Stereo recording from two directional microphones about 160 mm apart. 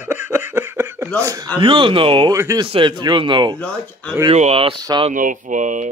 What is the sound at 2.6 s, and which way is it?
A man's voice, 30° right (ahead or behind).